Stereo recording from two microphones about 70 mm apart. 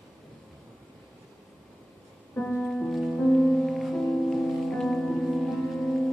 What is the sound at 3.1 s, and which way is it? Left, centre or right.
Music, left.